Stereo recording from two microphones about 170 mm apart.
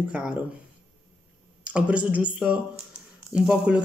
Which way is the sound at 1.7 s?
10° right (ahead or behind).